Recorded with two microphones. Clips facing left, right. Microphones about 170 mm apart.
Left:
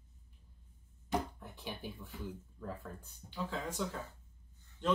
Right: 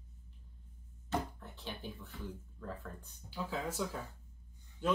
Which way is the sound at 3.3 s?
5° right (ahead or behind).